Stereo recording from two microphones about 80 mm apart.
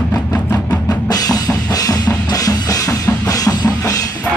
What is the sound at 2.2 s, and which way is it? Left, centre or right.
Music, left.